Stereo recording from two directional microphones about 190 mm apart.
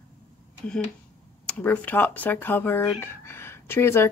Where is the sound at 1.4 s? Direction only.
5° left (ahead or behind).